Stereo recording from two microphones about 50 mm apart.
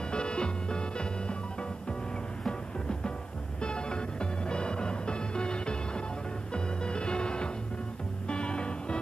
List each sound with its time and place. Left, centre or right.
0.1 s music: centre